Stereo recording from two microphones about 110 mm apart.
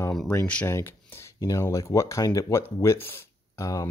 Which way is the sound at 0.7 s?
20° left (ahead or behind).